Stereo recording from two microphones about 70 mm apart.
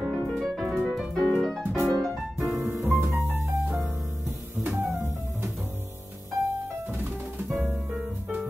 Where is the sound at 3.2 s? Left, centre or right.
Right.